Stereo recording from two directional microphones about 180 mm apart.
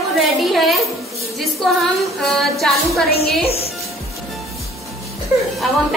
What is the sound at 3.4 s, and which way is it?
Speech, 35° left (ahead or behind).